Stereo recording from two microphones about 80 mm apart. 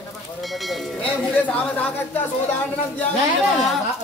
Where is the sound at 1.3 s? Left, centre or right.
Left.